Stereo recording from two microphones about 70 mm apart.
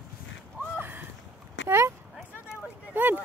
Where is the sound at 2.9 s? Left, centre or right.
Right.